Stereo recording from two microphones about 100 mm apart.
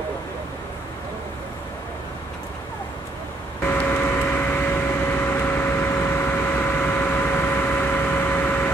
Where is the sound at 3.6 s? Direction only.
20° left (ahead or behind).